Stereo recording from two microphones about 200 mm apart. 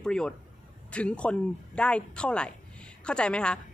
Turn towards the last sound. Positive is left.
turn(degrees=5)  # may be behind; listen again after turning